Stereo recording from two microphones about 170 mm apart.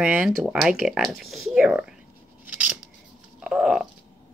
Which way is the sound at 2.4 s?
5° right (ahead or behind).